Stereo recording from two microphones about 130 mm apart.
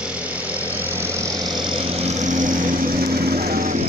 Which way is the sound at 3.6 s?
70° right (ahead or behind).